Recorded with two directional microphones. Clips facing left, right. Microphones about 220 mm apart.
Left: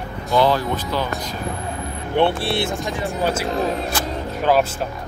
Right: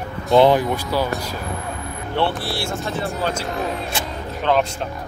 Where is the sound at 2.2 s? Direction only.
25° left (ahead or behind).